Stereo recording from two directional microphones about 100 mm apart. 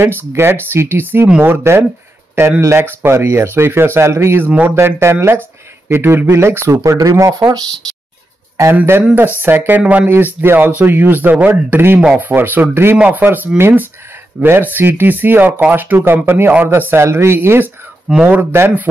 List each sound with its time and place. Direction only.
0.0 s speech: 25° right (ahead or behind)
4.5 s speech: 15° right (ahead or behind); by 7.4 s 35° right (ahead or behind)
8.7 s speech: 20° right (ahead or behind)